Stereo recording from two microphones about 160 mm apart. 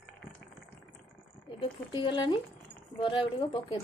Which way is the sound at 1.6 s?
30° left (ahead or behind).